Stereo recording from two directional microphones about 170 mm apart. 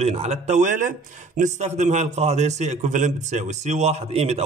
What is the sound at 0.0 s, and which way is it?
A man's voice, 40° right (ahead or behind).